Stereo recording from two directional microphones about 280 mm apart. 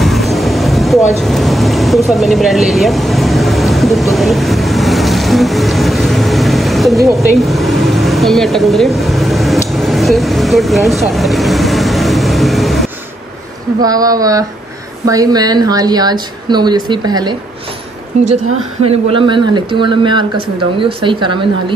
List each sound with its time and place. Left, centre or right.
0.0 s vehicle: centre
7.3 s speech: centre
13.7 s speech: centre
18.2 s a woman's voice: right
18.9 s speech: centre